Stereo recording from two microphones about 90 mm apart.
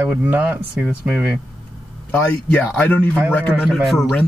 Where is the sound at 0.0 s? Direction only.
15° right (ahead or behind).